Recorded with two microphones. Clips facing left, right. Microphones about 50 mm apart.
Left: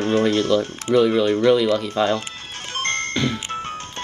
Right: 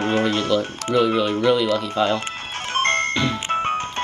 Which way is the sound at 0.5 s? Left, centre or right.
Centre.